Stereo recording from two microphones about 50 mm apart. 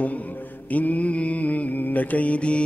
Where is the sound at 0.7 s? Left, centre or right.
Left.